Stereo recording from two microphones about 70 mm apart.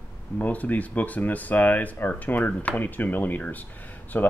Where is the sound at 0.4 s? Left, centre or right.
Left.